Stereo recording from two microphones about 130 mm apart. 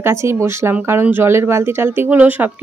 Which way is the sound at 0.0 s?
20° right (ahead or behind).